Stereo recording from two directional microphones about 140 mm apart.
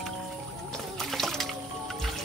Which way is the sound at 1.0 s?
Centre (ahead or behind).